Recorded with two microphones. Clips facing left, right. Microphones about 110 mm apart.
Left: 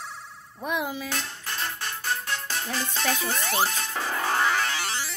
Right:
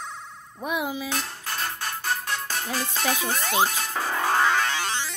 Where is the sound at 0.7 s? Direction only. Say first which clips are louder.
Right 1 dB; 15° right (ahead or behind).